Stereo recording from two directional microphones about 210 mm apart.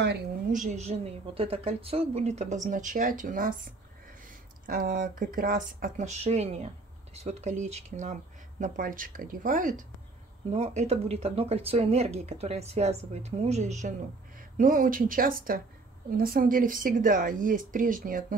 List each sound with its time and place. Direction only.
0.5 s speech: 35° right (ahead or behind)
4.6 s speech: 45° right (ahead or behind)